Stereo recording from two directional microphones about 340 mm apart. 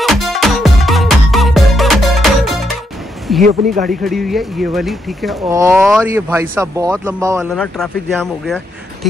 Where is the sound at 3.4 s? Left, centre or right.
Right.